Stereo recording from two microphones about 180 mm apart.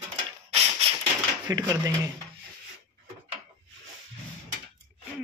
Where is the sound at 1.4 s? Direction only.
20° right (ahead or behind).